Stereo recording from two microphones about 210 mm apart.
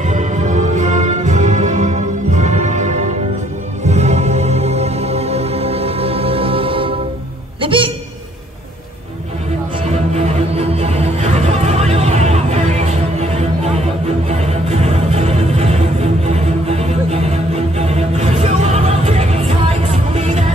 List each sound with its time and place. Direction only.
0.0 s music: 35° right (ahead or behind)
7.6 s a sound: 25° right (ahead or behind)
9.8 s music: 30° right (ahead or behind)